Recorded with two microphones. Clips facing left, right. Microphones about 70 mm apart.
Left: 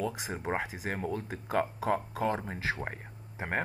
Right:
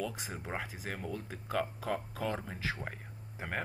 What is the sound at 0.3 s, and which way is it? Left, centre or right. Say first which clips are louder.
Speech: left 7 dB; left.